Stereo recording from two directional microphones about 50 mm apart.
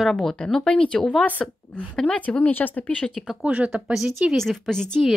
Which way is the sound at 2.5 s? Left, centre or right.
Left.